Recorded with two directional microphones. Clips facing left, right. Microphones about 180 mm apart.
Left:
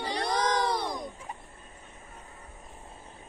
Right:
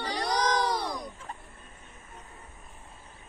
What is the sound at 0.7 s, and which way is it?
Fowl, 25° left (ahead or behind).